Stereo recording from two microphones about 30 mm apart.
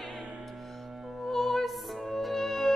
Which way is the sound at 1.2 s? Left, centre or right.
Centre.